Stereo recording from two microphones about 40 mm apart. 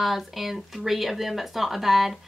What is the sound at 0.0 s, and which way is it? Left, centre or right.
Speech, centre.